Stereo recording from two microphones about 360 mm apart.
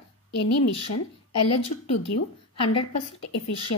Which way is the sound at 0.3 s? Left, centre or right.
Left.